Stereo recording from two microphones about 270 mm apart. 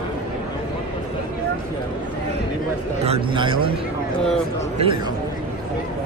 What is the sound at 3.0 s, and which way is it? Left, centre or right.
Speech, right.